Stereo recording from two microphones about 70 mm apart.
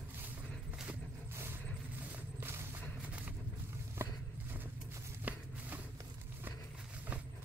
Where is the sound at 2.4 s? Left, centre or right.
Right.